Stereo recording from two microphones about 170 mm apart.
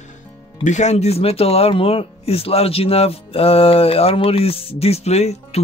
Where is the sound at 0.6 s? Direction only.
45° left (ahead or behind).